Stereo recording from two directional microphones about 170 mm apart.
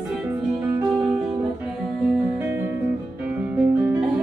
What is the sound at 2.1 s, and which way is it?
Music, 10° right (ahead or behind).